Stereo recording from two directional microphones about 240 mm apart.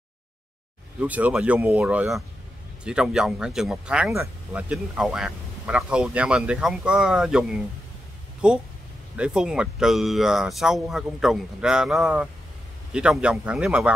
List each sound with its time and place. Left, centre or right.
1.0 s speech: centre